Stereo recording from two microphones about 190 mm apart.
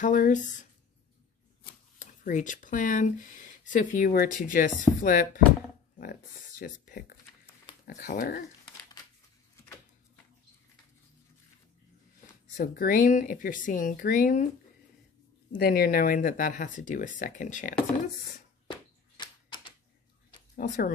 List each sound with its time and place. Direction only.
0.0 s speech: 45° left (ahead or behind)
6.6 s speech: 50° left (ahead or behind)
12.5 s speech: 45° left (ahead or behind)
15.5 s speech: 55° left (ahead or behind)
18.7 s a sound: 25° left (ahead or behind)
20.5 s speech: 50° left (ahead or behind)